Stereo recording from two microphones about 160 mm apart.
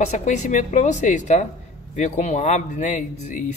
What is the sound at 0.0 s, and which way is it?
Speech, 45° left (ahead or behind).